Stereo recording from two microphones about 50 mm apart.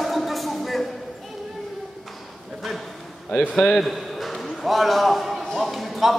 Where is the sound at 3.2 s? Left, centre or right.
Left.